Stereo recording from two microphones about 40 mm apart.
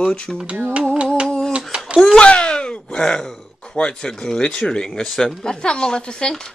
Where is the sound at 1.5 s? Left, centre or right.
Right.